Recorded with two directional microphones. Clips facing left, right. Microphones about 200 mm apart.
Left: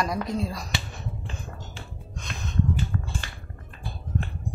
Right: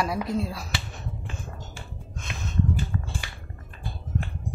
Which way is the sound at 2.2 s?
5° right (ahead or behind).